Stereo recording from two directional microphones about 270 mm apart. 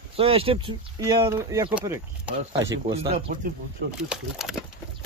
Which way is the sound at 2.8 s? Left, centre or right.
Right.